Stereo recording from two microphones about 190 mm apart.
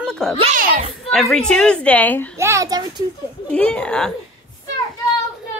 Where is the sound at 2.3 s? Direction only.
15° right (ahead or behind).